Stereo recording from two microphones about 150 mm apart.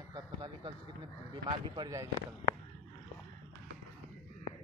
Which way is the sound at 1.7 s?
25° right (ahead or behind).